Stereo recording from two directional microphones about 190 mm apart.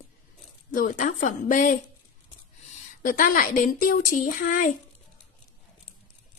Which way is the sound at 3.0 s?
45° left (ahead or behind).